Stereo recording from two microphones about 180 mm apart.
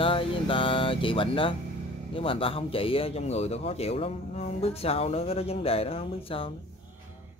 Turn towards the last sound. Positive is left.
turn(degrees=30)  # may be behind; listen again after turning